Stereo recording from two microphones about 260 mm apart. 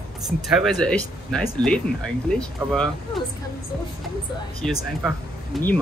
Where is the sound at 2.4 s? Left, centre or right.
Centre.